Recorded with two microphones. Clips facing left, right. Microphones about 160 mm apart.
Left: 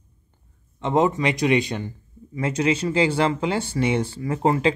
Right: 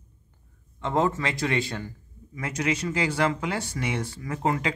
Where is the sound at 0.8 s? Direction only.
20° left (ahead or behind).